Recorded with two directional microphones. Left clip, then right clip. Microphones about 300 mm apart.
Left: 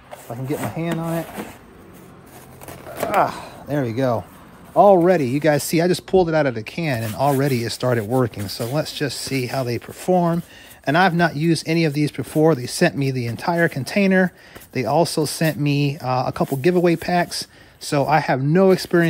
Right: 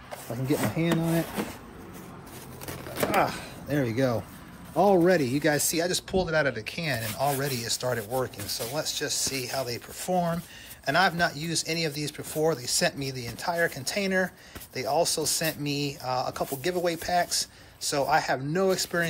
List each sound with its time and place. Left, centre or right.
0.7 s speech: left
1.2 s speech: centre
2.6 s a sound: centre
3.2 s speech: left